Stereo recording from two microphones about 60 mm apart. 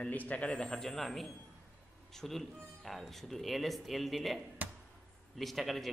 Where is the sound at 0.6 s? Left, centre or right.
Centre.